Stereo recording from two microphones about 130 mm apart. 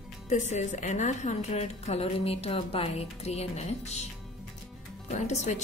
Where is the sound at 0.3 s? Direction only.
65° left (ahead or behind).